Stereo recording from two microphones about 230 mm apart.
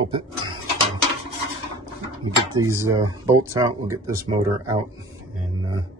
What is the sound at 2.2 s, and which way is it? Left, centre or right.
Speech, centre.